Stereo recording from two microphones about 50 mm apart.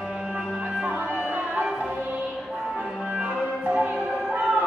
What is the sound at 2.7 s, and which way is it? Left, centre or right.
Music, centre.